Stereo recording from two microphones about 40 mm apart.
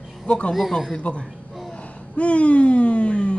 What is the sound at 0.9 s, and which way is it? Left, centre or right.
Speech, left.